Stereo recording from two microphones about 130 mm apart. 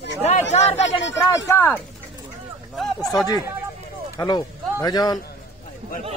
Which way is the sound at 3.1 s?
30° left (ahead or behind).